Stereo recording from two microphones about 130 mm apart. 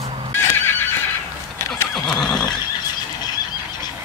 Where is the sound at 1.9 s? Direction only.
5° left (ahead or behind).